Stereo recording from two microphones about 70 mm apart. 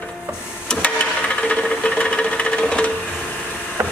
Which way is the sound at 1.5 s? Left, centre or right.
Centre.